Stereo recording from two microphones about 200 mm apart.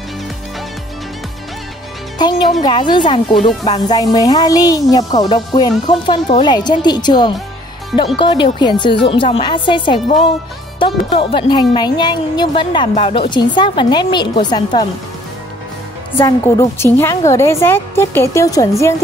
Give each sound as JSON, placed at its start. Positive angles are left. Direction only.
{"t": 2.2, "sound": "speech", "side_deg": 20}
{"t": 16.2, "sound": "a woman's voice", "side_deg": 15}